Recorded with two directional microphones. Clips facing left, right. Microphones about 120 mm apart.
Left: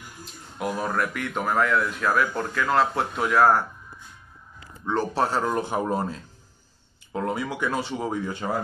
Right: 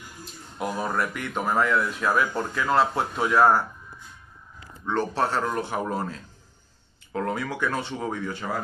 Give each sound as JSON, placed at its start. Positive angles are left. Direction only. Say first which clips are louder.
{"t": 0.2, "sound": "speech", "louder": "left 1 dB", "side_deg": 0}
{"t": 4.8, "sound": "speech", "louder": "left 1 dB", "side_deg": 10}
{"t": 8.4, "sound": "speech", "louder": "left 3 dB", "side_deg": 25}